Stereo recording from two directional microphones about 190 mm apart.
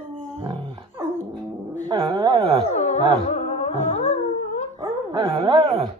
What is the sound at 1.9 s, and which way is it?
Dog, 25° right (ahead or behind).